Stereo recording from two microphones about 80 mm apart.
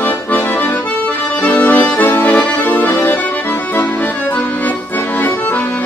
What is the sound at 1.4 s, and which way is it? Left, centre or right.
Accordion, left.